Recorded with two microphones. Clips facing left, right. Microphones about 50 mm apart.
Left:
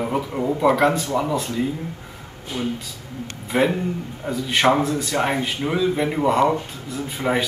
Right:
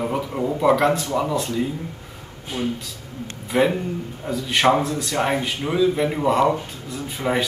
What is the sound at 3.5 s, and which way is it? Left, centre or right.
A man's voice, centre.